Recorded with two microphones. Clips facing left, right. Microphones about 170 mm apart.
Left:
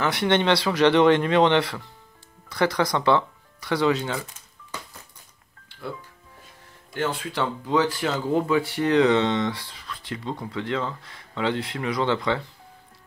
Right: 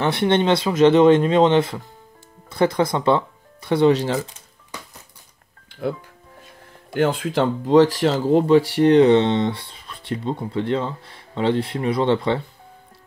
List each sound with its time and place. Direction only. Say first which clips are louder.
0.0 s speech: right 3 dB; 25° right (ahead or behind)
6.9 s speech: right 7 dB; 55° right (ahead or behind); by 12.4 s 25° right (ahead or behind)